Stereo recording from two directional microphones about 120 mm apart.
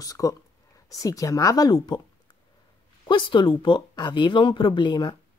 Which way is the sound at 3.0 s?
40° left (ahead or behind).